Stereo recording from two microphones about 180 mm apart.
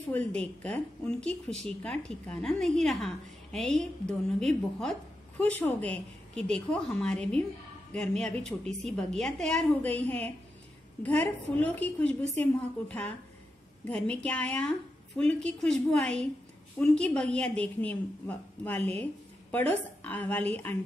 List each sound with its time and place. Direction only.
0.0 s a woman's voice: 10° left (ahead or behind)